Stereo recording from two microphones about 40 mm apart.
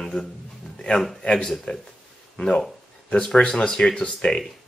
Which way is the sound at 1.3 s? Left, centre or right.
Centre.